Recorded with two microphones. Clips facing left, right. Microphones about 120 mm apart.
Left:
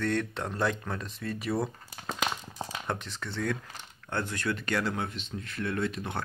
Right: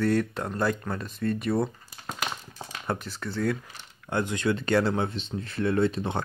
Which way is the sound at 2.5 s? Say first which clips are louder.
Left 4 dB; 20° left (ahead or behind).